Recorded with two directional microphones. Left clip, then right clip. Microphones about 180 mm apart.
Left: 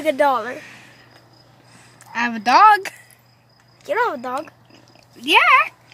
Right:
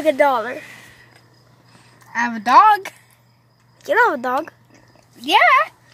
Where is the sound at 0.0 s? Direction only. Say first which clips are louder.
Right 2 dB; 5° right (ahead or behind).